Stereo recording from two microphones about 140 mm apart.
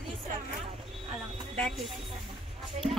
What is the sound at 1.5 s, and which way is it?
Speech, 5° left (ahead or behind).